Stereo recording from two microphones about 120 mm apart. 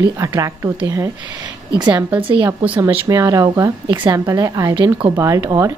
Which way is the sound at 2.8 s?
25° right (ahead or behind).